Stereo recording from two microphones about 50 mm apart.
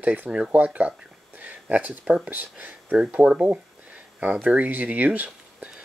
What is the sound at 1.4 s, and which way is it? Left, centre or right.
Speech, right.